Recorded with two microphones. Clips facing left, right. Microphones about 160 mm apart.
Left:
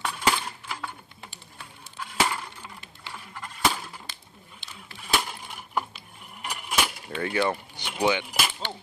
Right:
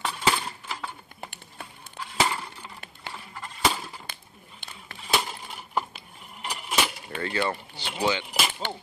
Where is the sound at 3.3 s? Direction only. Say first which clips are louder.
Even; 5° right (ahead or behind).